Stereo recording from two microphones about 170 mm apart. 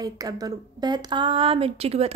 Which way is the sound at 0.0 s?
20° right (ahead or behind).